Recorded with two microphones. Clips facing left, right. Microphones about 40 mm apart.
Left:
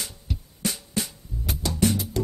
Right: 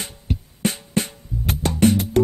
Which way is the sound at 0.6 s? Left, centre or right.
Right.